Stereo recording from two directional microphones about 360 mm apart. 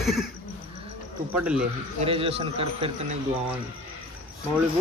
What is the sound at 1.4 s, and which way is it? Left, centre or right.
Speech, centre.